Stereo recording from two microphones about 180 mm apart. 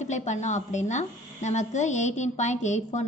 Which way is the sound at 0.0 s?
40° left (ahead or behind).